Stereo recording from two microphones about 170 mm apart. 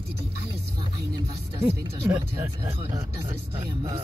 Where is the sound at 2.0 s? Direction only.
15° right (ahead or behind).